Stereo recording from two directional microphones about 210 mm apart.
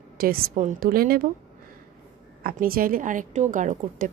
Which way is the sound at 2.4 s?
45° right (ahead or behind).